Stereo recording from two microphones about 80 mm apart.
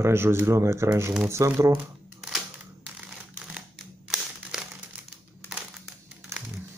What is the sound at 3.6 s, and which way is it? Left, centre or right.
Crumpling, centre.